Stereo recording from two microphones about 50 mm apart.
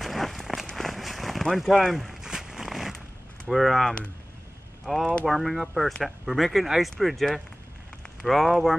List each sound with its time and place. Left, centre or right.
0.0 s a sound: centre
0.7 s run: centre
1.9 s a sound: centre
3.4 s speech: centre
3.8 s speech: left
4.9 s speech: centre
5.2 s speech: centre